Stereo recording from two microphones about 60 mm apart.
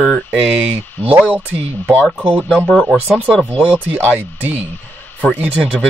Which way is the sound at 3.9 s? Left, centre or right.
Right.